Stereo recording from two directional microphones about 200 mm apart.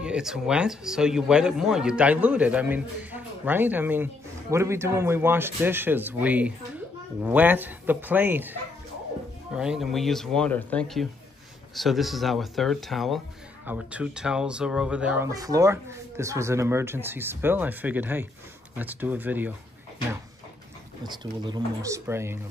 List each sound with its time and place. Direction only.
0.0 s a man's voice: 5° right (ahead or behind)
9.6 s a man's voice: centre (ahead or behind)
21.0 s speech: 20° right (ahead or behind)